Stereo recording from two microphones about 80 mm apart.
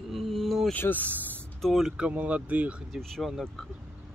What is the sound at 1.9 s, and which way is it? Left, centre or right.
Speech, centre.